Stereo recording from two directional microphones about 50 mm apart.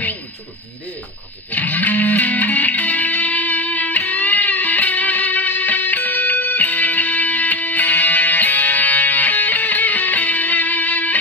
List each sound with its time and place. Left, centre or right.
1.5 s music: left